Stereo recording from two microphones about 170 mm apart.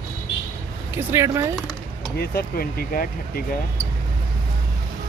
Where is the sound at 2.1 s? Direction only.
65° left (ahead or behind).